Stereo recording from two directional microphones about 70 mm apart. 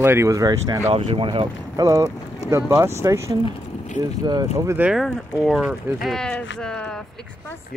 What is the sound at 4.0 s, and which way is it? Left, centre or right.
Speech, right.